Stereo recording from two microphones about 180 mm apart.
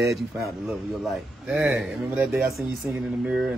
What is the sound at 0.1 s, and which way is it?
A man's voice, centre (ahead or behind).